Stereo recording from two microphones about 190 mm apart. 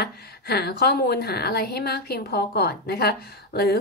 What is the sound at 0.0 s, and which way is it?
A woman's voice, 55° left (ahead or behind).